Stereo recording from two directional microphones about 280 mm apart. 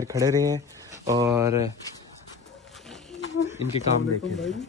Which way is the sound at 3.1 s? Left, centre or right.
Left.